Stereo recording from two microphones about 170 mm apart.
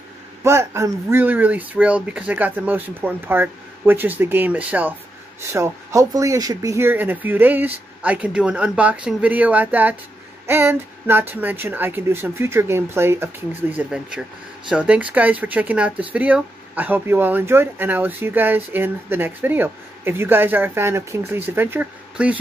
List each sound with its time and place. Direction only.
0.4 s speech: 15° right (ahead or behind)